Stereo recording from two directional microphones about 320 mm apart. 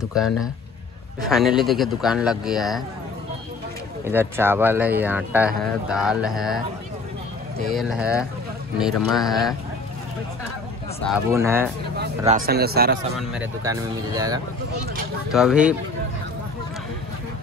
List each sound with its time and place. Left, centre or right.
0.1 s speech: centre
4.0 s speech: centre
7.7 s speech: centre
11.2 s speech: centre
12.3 s speech: right
13.3 s speech: centre